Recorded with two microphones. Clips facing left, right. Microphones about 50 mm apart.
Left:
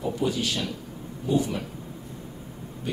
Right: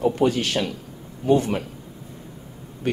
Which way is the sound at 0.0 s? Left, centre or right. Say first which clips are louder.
Right 6 dB; right.